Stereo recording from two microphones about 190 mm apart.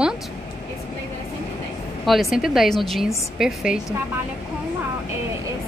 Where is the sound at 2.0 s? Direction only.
Centre (ahead or behind).